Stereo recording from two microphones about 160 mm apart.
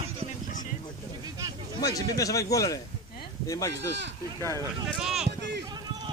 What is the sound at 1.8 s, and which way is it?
Speech, 20° left (ahead or behind).